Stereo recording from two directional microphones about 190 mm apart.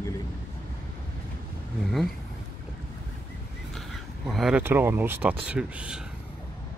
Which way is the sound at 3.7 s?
Centre (ahead or behind).